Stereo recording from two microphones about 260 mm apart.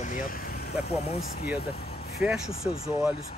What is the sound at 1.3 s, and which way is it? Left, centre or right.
Speech, left.